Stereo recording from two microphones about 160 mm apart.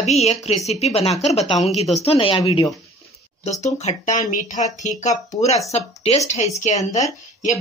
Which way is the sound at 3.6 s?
45° left (ahead or behind).